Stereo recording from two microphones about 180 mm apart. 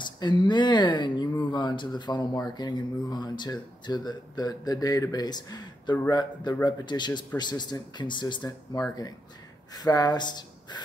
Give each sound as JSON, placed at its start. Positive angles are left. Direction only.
{"t": 0.0, "sound": "speech", "side_deg": 25}